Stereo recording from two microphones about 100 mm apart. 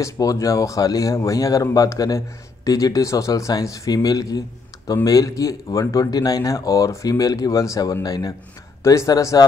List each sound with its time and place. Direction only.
0.0 s speech: 35° left (ahead or behind)